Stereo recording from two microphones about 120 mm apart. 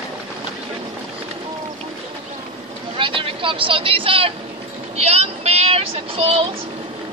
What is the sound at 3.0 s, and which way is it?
Speech, 45° right (ahead or behind).